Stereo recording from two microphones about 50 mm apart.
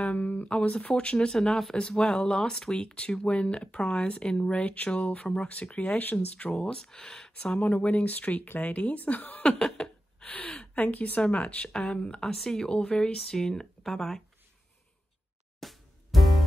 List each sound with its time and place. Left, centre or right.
0.0 s speech: left
5.5 s speech: left
6.5 s speech: centre
7.5 s speech: left
9.6 s a sound: centre
10.2 s a sound: left
10.8 s speech: left; by 12.3 s centre
12.3 s speech: centre
15.6 s music: centre